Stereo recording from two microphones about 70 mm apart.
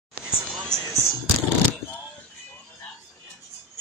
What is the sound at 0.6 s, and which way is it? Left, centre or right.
Music, centre.